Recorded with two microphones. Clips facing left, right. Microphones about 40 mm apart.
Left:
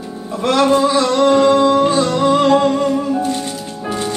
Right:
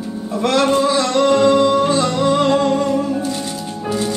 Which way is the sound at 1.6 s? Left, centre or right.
Left.